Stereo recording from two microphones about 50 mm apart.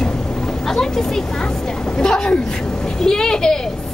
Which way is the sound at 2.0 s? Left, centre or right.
Centre.